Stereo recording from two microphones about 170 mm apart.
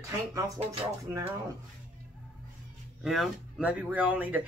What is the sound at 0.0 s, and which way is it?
Speech, 20° right (ahead or behind).